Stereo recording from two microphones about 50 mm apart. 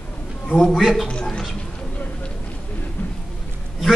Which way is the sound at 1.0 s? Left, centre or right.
Centre.